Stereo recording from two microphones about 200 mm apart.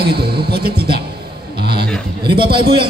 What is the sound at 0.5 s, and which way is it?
Speech, 50° right (ahead or behind).